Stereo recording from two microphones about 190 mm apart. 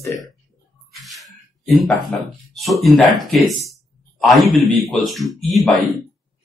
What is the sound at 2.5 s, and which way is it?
A man's voice, centre (ahead or behind).